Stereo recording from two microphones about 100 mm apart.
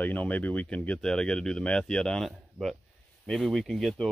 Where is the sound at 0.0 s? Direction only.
15° left (ahead or behind).